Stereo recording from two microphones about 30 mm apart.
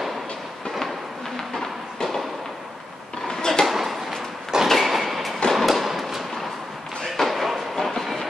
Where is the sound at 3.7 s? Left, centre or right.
Centre.